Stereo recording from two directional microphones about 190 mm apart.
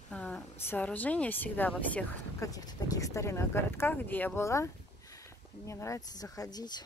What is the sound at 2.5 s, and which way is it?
Speech, 20° left (ahead or behind).